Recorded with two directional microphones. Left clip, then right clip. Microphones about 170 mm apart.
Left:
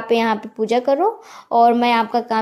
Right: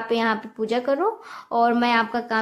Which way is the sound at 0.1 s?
20° left (ahead or behind).